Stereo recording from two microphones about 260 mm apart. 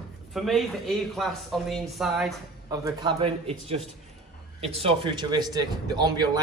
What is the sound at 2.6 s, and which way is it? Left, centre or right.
A man's voice, centre.